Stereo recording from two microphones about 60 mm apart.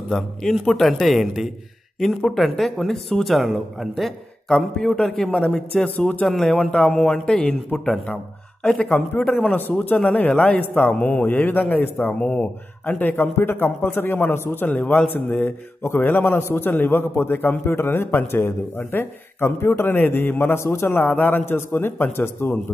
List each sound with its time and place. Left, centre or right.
0.1 s a man's voice: centre
5.9 s a man's voice: left
6.2 s speech: centre
8.8 s a man's voice: left
12.2 s speech: centre
12.8 s a man's voice: left
14.7 s a man's voice: left
16.0 s a man's voice: left